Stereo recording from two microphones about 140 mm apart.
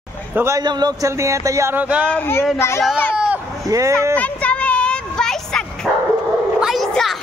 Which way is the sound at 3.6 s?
25° right (ahead or behind).